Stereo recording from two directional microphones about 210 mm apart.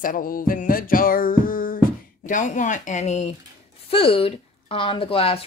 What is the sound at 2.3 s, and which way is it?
Speech, 35° left (ahead or behind).